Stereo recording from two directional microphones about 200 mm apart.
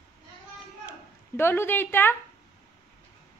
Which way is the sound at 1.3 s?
10° left (ahead or behind).